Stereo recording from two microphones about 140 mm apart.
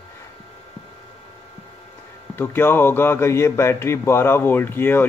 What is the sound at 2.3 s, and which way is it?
A man's voice, 15° left (ahead or behind).